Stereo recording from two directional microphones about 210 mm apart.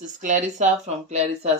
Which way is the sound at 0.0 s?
35° right (ahead or behind).